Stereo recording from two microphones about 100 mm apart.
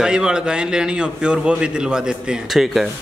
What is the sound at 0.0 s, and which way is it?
A man's voice, 5° right (ahead or behind).